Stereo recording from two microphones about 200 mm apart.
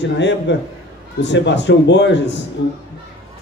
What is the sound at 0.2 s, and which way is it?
A man's voice, 60° left (ahead or behind).